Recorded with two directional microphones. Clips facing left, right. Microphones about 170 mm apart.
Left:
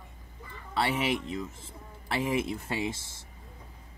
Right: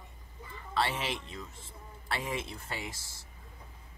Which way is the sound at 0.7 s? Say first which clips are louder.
Left 4 dB; 15° left (ahead or behind).